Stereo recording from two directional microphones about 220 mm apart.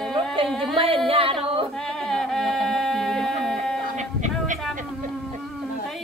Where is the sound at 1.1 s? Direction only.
25° right (ahead or behind).